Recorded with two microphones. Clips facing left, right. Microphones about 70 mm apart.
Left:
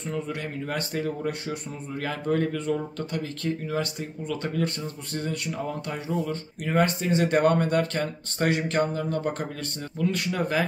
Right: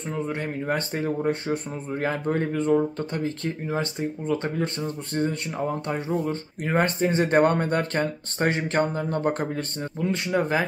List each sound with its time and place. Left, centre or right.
0.1 s speech: right